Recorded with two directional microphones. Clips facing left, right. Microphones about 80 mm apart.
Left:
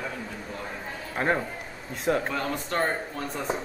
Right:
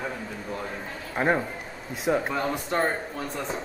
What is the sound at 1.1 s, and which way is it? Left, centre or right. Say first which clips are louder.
A man's voice: right 2 dB; centre.